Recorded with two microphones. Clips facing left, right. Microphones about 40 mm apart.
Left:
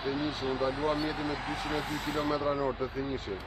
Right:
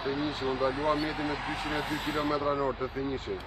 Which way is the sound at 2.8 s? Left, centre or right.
Right.